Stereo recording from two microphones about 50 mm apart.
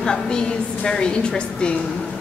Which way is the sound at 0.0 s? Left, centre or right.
Centre.